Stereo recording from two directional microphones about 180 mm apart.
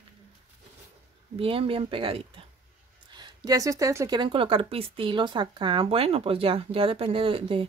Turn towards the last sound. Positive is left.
turn(degrees=-30)  # may be behind; listen again after turning